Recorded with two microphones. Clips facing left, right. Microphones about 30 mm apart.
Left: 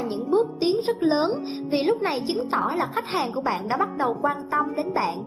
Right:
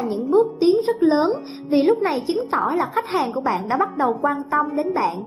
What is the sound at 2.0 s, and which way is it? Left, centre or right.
Speech, left.